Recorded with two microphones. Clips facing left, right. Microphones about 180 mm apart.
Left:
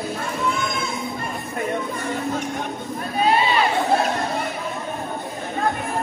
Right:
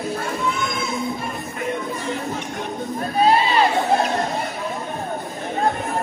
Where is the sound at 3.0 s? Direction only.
35° right (ahead or behind).